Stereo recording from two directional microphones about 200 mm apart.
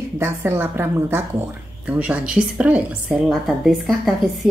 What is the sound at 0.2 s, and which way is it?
A woman's voice, 10° right (ahead or behind).